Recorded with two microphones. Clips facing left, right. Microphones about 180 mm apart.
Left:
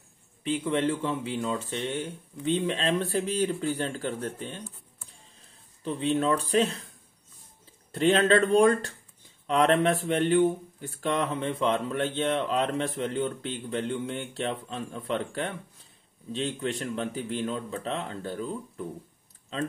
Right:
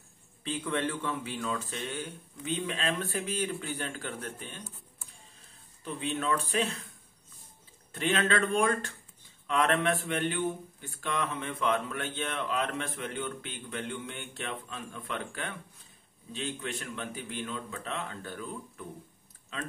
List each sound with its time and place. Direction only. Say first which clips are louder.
0.4 s speech: left 5 dB; 20° left (ahead or behind)
5.9 s speech: left 6 dB; 35° left (ahead or behind)
7.9 s speech: left 7 dB; 35° left (ahead or behind)